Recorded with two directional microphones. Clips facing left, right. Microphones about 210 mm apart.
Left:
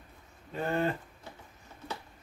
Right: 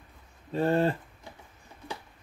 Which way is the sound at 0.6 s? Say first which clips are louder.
Right 5 dB; 35° right (ahead or behind).